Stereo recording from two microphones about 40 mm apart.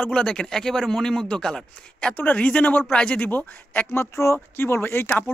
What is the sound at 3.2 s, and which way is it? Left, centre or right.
Speech, left.